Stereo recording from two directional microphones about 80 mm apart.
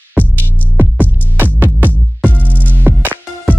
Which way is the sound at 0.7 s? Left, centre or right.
Right.